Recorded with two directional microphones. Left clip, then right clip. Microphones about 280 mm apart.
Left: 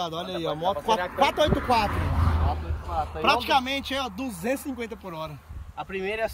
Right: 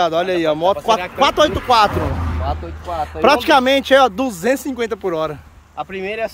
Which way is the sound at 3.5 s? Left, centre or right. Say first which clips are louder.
Right 13 dB; centre.